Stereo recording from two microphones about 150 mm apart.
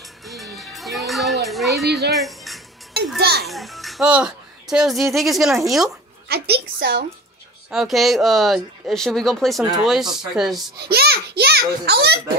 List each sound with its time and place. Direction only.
0.2 s music: centre (ahead or behind)
1.9 s speech: 90° right
2.1 s music: centre (ahead or behind)
3.2 s a child's voice: 90° right
3.4 s speech: centre (ahead or behind)
6.2 s a woman's voice: 90° right
7.7 s speech: centre (ahead or behind)
10.8 s a child's voice: 90° right